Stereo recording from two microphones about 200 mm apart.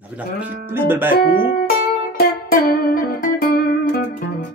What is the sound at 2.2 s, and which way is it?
Music, 50° left (ahead or behind).